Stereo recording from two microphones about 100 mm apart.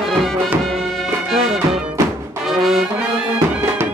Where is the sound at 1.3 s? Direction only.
Centre (ahead or behind).